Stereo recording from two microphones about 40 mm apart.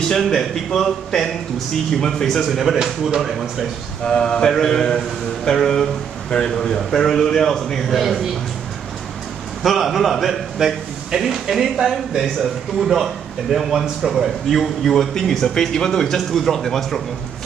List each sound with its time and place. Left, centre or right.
0.1 s speech: centre
2.4 s speech: centre
4.0 s speech: left; by 8.0 s centre
9.6 s speech: centre
15.1 s speech: centre